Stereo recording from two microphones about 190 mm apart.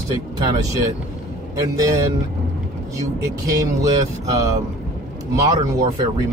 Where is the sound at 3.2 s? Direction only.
20° right (ahead or behind).